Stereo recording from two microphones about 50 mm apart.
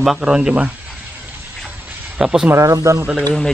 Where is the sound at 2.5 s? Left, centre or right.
Right.